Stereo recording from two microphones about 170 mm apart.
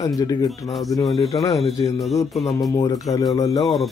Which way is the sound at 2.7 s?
20° left (ahead or behind).